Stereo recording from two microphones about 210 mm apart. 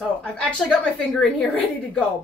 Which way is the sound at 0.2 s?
5° left (ahead or behind).